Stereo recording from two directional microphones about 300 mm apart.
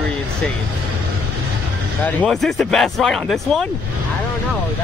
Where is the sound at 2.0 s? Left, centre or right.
Centre.